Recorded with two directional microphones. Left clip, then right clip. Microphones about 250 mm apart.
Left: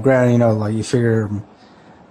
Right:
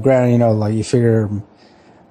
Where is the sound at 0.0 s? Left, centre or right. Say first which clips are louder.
Right 1 dB; centre.